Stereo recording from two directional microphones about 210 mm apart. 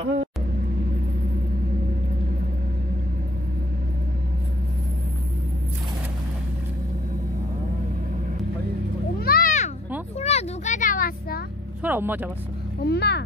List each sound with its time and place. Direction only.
9.2 s music: 45° left (ahead or behind)
10.1 s a sound: 30° left (ahead or behind)
11.8 s speech: 10° right (ahead or behind)
12.8 s speech: 50° left (ahead or behind)